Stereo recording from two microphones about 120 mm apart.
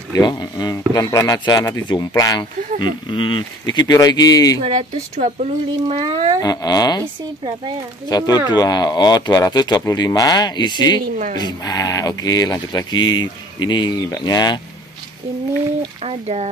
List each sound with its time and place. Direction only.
0.1 s speech: 35° left (ahead or behind)
4.7 s speech: 75° right (ahead or behind); by 6.3 s 50° right (ahead or behind)
6.4 s speech: 35° left (ahead or behind)
8.1 s speech: 30° left (ahead or behind)
16.0 s speech: 60° right (ahead or behind)